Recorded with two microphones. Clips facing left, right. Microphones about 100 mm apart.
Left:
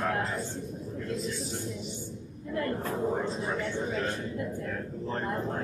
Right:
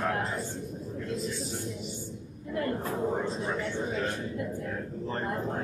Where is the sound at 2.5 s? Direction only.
20° right (ahead or behind).